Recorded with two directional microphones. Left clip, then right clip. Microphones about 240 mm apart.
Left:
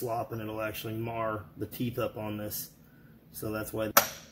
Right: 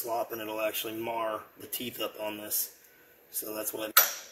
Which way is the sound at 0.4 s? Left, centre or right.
Centre.